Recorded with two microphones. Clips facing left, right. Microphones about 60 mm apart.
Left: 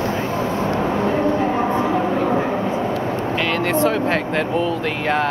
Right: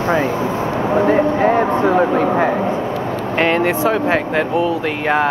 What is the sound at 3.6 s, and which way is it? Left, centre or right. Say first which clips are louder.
Speech: right 2 dB; centre.